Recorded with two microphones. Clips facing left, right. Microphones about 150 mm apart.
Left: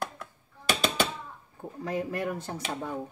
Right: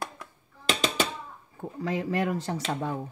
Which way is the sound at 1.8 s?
90° right.